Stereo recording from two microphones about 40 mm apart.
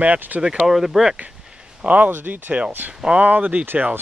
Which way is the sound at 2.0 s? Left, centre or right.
Right.